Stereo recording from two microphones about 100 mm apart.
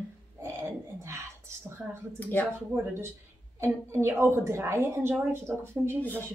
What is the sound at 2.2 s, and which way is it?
Speech, 15° left (ahead or behind).